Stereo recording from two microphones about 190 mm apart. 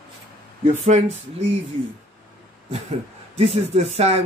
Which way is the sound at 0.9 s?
35° right (ahead or behind).